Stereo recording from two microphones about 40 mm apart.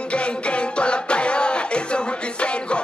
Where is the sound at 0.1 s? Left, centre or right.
Left.